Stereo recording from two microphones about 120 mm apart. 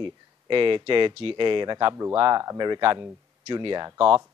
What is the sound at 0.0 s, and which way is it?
A man's voice, 45° right (ahead or behind).